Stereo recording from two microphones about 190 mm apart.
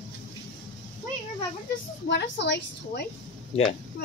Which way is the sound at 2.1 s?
65° left (ahead or behind).